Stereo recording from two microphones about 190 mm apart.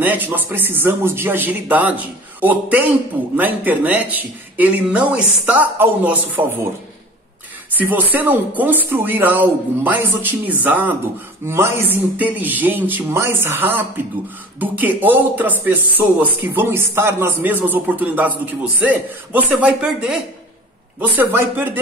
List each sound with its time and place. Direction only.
0.0 s speech: 10° right (ahead or behind)
7.7 s speech: 10° right (ahead or behind)